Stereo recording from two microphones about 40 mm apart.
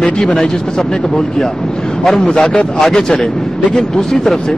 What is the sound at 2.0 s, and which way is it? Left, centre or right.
Speech, centre.